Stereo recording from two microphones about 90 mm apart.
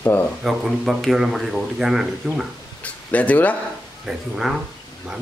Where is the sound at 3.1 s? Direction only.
15° left (ahead or behind).